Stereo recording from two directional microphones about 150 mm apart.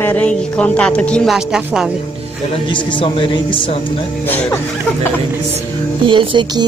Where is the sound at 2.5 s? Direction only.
35° left (ahead or behind).